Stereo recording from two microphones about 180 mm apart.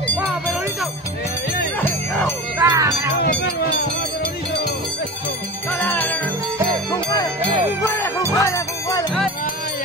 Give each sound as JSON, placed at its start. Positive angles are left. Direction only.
{"t": 2.6, "sound": "speech", "side_deg": -20}
{"t": 5.8, "sound": "music", "side_deg": 10}
{"t": 7.9, "sound": "music", "side_deg": 15}